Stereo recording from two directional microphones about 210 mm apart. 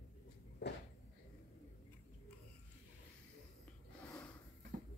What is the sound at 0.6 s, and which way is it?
Speech, 55° left (ahead or behind).